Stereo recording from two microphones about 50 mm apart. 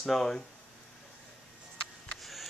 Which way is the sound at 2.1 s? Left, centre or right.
Centre.